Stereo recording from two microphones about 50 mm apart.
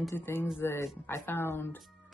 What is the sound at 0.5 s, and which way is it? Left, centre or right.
Speech, left.